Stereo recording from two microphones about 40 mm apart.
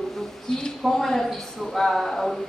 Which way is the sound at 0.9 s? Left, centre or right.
Centre.